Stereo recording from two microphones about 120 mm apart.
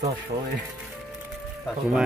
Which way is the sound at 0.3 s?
80° right.